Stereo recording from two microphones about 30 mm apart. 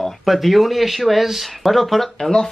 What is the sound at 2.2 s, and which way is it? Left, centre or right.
Speech, left.